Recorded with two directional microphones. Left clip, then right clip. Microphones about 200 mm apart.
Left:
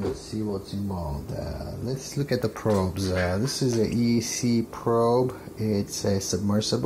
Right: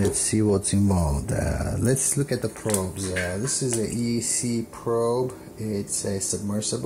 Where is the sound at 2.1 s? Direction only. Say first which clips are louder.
Right 1 dB; 10° right (ahead or behind).